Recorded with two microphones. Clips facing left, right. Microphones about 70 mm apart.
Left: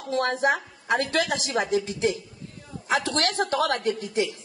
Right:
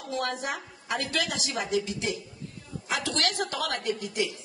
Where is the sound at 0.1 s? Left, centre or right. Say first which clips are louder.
Left 8 dB; left.